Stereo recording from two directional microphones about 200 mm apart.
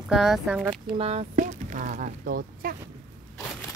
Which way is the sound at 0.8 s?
30° right (ahead or behind).